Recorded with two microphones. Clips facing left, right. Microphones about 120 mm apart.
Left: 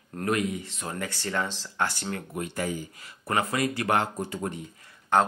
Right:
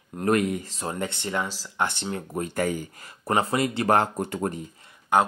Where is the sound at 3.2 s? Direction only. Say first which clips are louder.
Right 3 dB; 25° right (ahead or behind).